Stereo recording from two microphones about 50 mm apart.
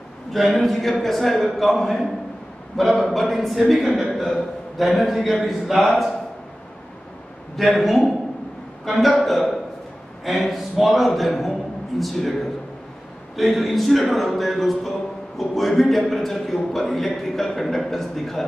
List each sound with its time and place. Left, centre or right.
0.3 s a man's voice: centre
7.5 s a man's voice: centre